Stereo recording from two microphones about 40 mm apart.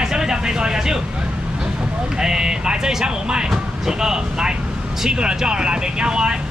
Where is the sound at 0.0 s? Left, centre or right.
Centre.